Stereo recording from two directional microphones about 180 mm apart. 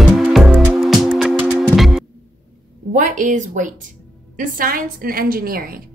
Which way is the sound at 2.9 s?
45° right (ahead or behind).